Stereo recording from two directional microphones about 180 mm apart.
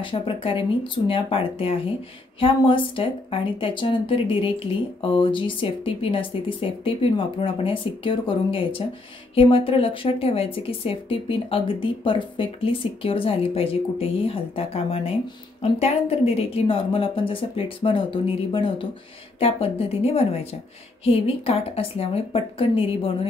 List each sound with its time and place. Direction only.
0.0 s speech: 30° left (ahead or behind)